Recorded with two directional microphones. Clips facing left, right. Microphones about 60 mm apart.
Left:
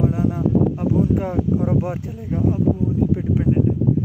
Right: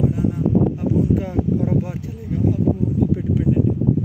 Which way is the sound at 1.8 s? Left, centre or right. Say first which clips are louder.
Left 1 dB; left.